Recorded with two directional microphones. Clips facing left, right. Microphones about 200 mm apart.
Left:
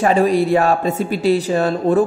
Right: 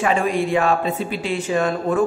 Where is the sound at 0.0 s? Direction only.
35° left (ahead or behind).